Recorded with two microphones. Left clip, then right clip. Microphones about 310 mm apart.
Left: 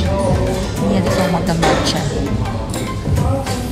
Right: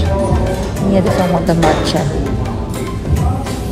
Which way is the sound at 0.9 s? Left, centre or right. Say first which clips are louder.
Right 4 dB; centre.